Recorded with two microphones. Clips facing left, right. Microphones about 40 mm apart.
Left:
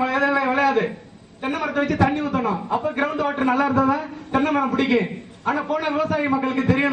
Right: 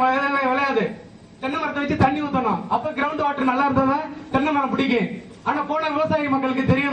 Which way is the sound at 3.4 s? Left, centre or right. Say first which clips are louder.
Left 1 dB; centre.